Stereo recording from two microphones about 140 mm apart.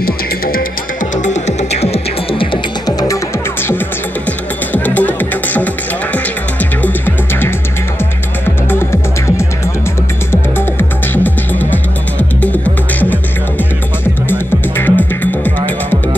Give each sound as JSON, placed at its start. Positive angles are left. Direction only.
{"t": 0.0, "sound": "music", "side_deg": 90}
{"t": 1.1, "sound": "music", "side_deg": 60}
{"t": 4.8, "sound": "music", "side_deg": 10}
{"t": 6.8, "sound": "music", "side_deg": 15}
{"t": 10.3, "sound": "music", "side_deg": 15}
{"t": 14.8, "sound": "music", "side_deg": 15}